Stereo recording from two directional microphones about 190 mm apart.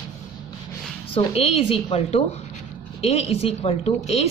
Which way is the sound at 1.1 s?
30° left (ahead or behind).